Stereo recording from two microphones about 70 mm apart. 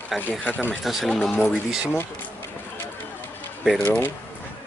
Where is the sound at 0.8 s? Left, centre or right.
Centre.